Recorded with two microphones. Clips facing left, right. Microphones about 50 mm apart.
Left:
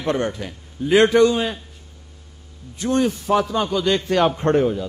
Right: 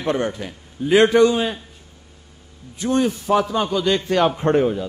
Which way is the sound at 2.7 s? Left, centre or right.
Centre.